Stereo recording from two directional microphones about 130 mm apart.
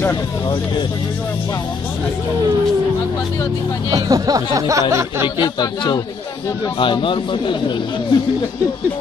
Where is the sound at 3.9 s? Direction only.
30° right (ahead or behind).